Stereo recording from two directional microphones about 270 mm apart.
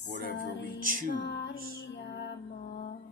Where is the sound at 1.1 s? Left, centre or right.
Left.